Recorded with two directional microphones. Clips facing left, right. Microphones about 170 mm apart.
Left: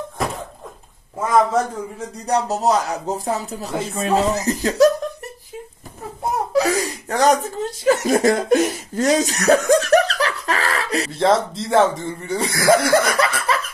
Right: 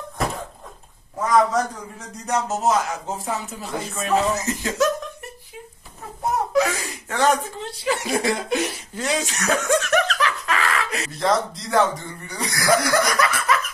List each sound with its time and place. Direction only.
1.2 s a man's voice: 30° left (ahead or behind)
6.5 s speech: 35° left (ahead or behind)